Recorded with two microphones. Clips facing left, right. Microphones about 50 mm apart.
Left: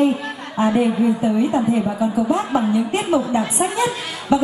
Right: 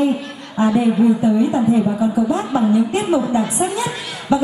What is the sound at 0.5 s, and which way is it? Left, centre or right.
A woman's voice, left.